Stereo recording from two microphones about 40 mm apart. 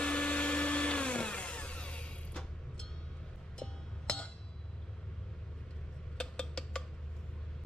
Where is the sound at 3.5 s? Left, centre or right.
Centre.